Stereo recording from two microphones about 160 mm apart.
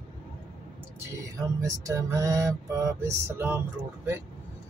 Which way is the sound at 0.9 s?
20° right (ahead or behind).